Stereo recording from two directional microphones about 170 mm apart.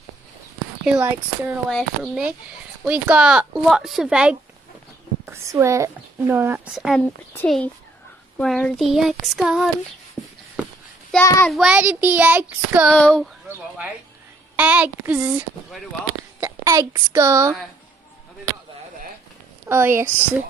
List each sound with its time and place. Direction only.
0.8 s child singing: 5° right (ahead or behind)
1.7 s speech: 5° left (ahead or behind)
11.1 s child singing: 15° left (ahead or behind)
11.4 s child singing: centre (ahead or behind)
12.9 s speech: 5° left (ahead or behind)
13.5 s child singing: 10° right (ahead or behind)
16.3 s a woman's voice: 15° right (ahead or behind)
19.7 s child singing: 15° right (ahead or behind)